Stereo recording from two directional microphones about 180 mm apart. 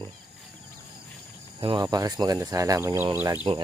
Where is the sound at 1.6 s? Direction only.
25° right (ahead or behind).